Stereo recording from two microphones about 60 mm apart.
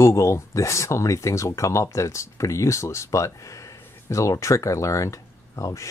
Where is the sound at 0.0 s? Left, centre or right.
Left.